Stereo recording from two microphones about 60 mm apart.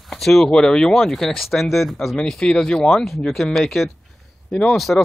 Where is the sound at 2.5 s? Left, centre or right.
Centre.